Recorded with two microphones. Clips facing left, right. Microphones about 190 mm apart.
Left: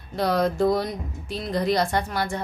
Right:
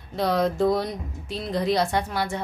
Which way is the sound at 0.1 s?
Centre (ahead or behind).